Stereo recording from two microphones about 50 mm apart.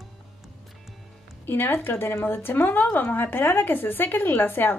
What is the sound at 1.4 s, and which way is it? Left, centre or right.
Speech, left.